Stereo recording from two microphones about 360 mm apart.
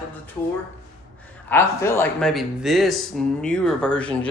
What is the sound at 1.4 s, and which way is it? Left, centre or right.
Speech, centre.